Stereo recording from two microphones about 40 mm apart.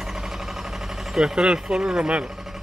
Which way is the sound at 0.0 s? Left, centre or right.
Centre.